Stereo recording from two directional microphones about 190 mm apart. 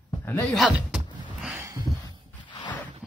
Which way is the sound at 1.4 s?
10° right (ahead or behind).